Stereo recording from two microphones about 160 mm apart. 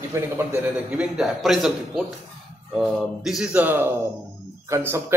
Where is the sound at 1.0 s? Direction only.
Centre (ahead or behind).